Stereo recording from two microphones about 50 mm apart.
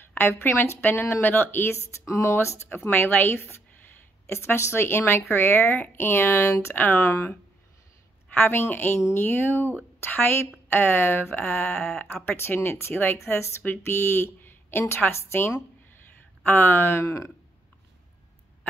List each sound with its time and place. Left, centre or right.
0.1 s speech: left
1.9 s speech: left
2.7 s speech: left
4.3 s speech: left
7.0 s speech: left
8.4 s speech: left
11.4 s speech: left
12.3 s speech: left
13.6 s speech: left
14.2 s a sound: left
15.0 s speech: left
16.4 s speech: left
17.0 s speech: left